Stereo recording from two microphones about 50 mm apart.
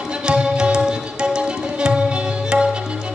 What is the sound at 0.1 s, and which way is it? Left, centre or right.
Music, centre.